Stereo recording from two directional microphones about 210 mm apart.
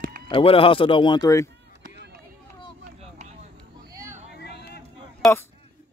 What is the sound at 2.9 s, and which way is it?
Vehicle, 35° right (ahead or behind).